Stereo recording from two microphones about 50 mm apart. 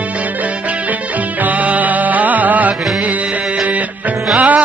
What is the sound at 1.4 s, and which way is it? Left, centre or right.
Music, right.